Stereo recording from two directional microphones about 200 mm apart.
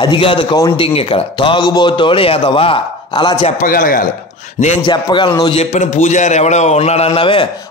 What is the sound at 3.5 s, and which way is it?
Speech, 45° left (ahead or behind).